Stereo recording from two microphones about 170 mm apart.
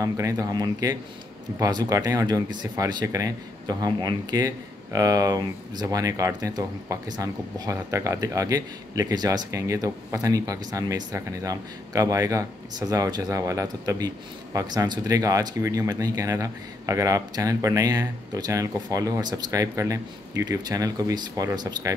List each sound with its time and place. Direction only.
0.0 s speech: 20° right (ahead or behind)